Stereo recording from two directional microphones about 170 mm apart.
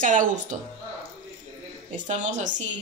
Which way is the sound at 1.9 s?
45° right (ahead or behind).